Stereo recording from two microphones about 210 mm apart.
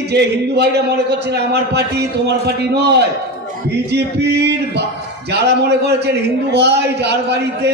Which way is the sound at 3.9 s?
55° right (ahead or behind).